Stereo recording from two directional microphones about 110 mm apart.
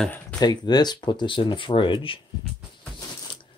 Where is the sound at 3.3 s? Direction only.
50° left (ahead or behind).